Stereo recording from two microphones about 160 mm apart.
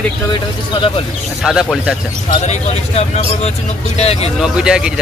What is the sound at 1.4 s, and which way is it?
Speech, 5° right (ahead or behind).